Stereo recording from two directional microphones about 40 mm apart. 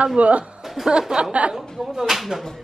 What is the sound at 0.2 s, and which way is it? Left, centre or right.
Speech, right.